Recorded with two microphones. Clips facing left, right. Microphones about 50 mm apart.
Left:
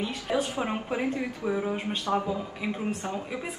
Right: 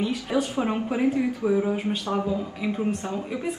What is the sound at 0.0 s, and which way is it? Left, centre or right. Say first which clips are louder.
Speech: right 3 dB; centre.